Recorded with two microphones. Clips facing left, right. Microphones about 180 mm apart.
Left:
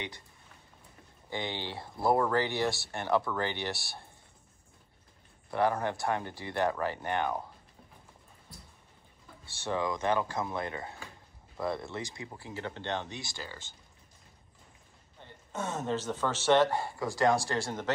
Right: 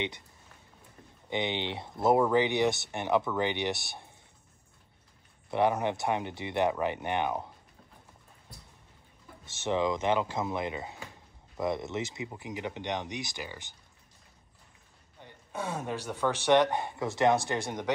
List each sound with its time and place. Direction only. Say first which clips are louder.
1.3 s speech: right 4 dB; 20° right (ahead or behind)
5.5 s speech: right 2 dB; 20° right (ahead or behind)
9.5 s speech: right 4 dB; 20° right (ahead or behind)
15.2 s speech: right 1 dB; 10° right (ahead or behind)